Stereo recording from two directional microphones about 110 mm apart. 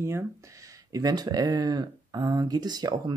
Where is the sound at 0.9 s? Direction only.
35° right (ahead or behind).